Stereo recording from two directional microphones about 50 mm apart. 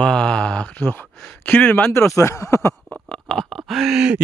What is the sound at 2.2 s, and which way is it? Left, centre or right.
Speech, left.